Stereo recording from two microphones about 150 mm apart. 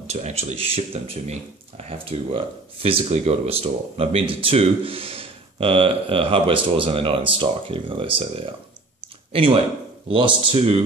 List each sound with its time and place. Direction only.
0.0 s speech: 45° right (ahead or behind)